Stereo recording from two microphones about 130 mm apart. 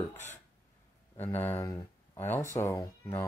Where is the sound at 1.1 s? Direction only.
15° left (ahead or behind).